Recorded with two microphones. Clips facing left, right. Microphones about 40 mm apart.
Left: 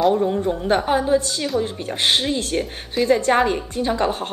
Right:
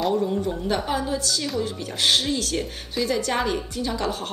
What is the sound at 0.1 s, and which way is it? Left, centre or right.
A woman's voice, left.